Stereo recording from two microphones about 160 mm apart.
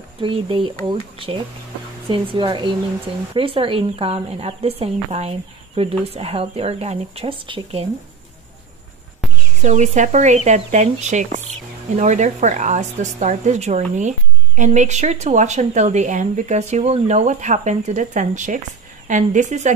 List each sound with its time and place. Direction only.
0.2 s speech: 35° right (ahead or behind)
9.6 s speech: 50° right (ahead or behind)